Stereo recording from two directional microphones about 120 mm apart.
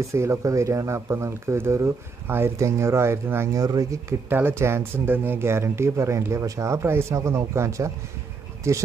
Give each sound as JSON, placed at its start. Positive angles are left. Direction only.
{"t": 0.1, "sound": "speech", "side_deg": -25}
{"t": 3.6, "sound": "speech", "side_deg": -30}
{"t": 4.3, "sound": "speech", "side_deg": -15}